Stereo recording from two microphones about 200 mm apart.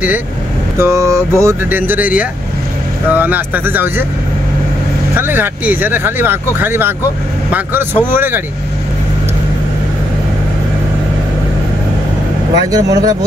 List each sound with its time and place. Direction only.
0.7 s speech: 15° right (ahead or behind)
5.1 s speech: 10° right (ahead or behind)
12.5 s speech: 20° right (ahead or behind)